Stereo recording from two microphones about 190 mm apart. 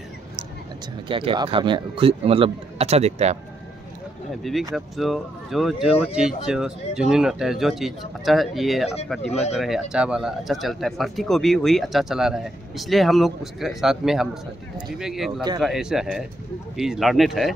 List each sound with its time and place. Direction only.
1.0 s speech: 25° right (ahead or behind)
4.3 s speech: centre (ahead or behind)